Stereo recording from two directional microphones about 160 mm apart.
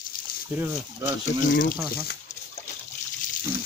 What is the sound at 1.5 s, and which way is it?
Speech, 60° left (ahead or behind).